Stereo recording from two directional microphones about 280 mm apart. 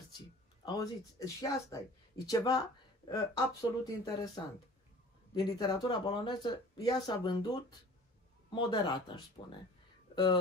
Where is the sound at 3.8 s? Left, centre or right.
Centre.